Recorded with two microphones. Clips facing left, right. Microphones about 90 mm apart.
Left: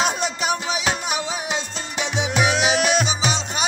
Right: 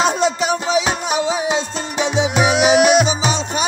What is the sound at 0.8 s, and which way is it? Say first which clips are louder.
Music: right 5 dB; 35° right (ahead or behind).